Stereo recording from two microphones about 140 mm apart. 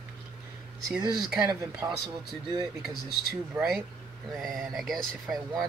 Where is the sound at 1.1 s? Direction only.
5° right (ahead or behind).